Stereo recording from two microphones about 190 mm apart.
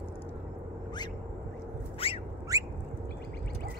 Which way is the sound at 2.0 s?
30° left (ahead or behind).